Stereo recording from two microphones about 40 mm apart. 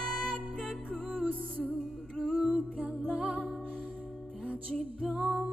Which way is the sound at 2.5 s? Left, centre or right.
Right.